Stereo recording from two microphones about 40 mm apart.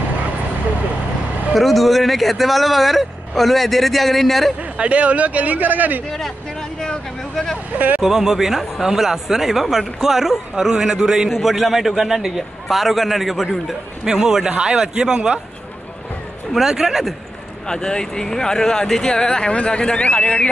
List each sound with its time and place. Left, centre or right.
1.5 s speech: centre
4.6 s speech: right
6.0 s speech: centre
7.7 s speech: right
8.0 s speech: centre
10.5 s speech: centre
14.0 s a man's voice: centre
16.5 s speech: centre
17.6 s speech: centre